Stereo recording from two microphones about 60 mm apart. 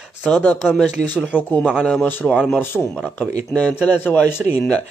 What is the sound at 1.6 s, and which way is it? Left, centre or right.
Speech, centre.